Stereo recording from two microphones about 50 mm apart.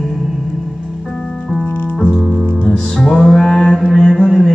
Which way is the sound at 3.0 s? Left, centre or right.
Centre.